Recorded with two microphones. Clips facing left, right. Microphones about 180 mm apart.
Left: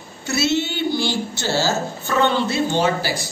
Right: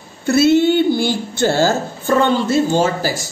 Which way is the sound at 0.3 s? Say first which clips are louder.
Right 9 dB; 55° right (ahead or behind).